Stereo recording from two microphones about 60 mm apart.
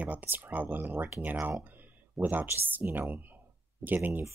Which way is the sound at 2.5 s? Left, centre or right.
Right.